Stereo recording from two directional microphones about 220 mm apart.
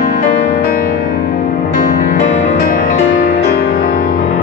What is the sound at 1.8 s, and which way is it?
Music, 35° left (ahead or behind).